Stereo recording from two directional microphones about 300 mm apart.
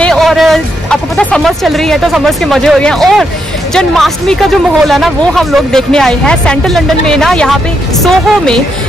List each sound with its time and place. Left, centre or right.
0.0 s speech: centre